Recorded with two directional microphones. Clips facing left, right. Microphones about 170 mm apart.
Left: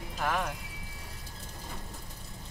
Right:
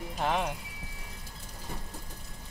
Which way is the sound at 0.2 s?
25° right (ahead or behind).